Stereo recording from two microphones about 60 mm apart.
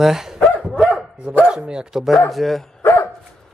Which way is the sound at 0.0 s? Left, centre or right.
Centre.